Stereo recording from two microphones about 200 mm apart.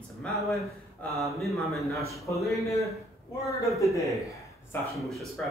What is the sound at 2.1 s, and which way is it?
Speech, 15° left (ahead or behind).